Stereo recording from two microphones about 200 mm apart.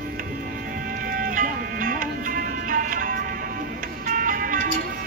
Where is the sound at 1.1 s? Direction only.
45° right (ahead or behind).